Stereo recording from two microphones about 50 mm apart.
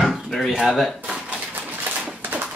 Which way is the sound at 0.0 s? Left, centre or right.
Centre.